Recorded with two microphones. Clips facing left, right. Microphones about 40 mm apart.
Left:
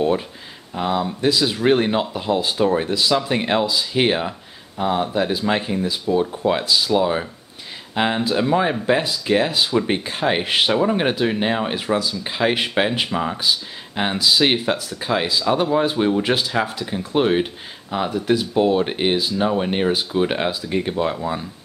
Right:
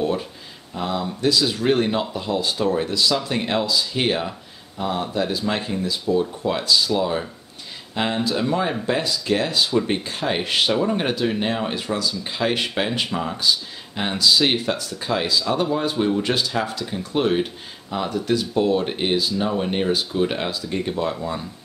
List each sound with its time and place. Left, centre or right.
0.7 s speech: left